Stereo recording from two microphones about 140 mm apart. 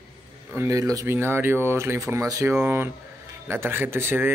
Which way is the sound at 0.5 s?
20° right (ahead or behind).